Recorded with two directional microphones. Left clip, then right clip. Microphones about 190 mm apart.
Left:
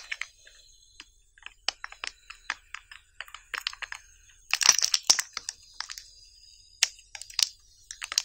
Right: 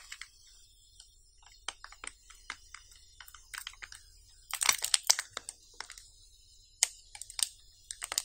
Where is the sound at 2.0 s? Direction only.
20° left (ahead or behind).